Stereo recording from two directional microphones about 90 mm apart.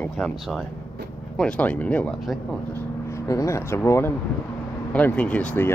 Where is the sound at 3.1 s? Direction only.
35° left (ahead or behind).